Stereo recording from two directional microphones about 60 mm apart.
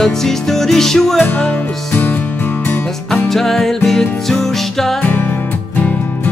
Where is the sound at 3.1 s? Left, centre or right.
Centre.